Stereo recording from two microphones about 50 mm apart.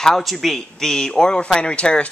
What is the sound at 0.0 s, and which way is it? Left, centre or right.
Speech, centre.